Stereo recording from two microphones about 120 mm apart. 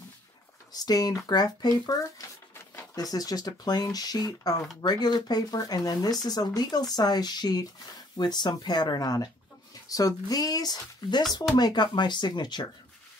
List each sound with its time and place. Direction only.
0.7 s speech: 30° left (ahead or behind)
2.7 s a sound: 20° left (ahead or behind)
3.0 s speech: 30° left (ahead or behind)